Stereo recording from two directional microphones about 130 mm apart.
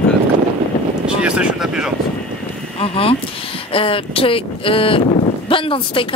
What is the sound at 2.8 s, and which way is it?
Speech, 45° left (ahead or behind).